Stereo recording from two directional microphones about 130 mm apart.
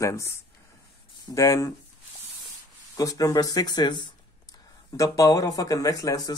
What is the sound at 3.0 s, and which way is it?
Speech, 25° left (ahead or behind).